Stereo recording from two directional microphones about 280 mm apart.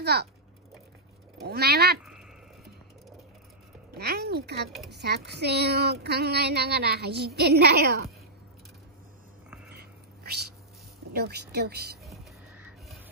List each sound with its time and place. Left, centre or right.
0.0 s a child's voice: right
1.4 s a woman's voice: right
3.9 s a woman's voice: right
11.1 s a woman's voice: right
12.0 s music: centre